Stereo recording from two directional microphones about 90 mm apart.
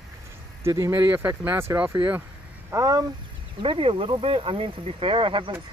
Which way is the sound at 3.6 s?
70° right (ahead or behind).